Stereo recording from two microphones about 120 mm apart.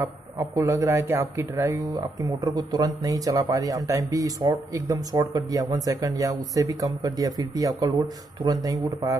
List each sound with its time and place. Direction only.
0.6 s speech: 25° right (ahead or behind)